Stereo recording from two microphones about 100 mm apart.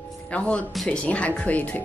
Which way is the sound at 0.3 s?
15° left (ahead or behind).